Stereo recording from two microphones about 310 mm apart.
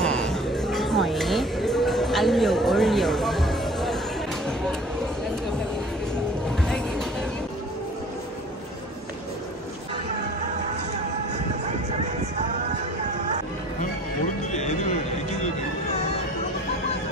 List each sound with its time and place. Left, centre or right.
0.0 s music: centre
14.5 s music: left